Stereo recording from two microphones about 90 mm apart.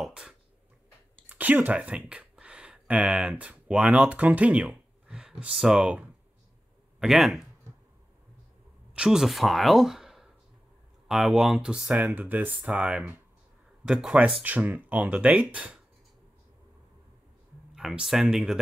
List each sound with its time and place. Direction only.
0.0 s a sound: 10° right (ahead or behind)
1.3 s speech: 20° right (ahead or behind)
8.9 s speech: 5° right (ahead or behind)
14.4 s speech: 20° right (ahead or behind)
17.7 s speech: 5° right (ahead or behind)